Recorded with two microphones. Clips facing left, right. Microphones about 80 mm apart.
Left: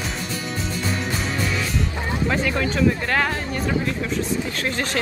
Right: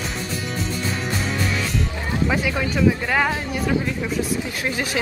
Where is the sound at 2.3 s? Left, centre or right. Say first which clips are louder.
Left 1 dB; centre.